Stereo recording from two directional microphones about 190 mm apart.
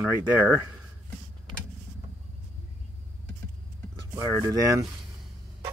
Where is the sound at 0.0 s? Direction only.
10° right (ahead or behind).